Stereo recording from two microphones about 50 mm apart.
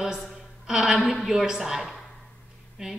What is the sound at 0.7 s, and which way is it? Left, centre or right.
Speech, centre.